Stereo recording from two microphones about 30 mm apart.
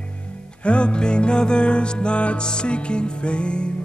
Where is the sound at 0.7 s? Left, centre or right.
Left.